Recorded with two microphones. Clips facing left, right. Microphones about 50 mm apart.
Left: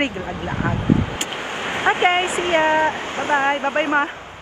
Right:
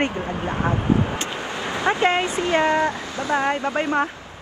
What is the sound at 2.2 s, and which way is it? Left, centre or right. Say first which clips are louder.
Speech: left 2 dB; left.